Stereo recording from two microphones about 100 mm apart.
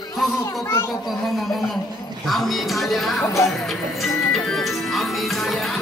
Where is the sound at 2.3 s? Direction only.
Centre (ahead or behind).